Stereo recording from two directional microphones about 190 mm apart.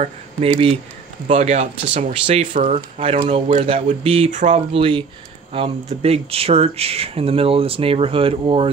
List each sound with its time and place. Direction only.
1.2 s speech: 35° right (ahead or behind)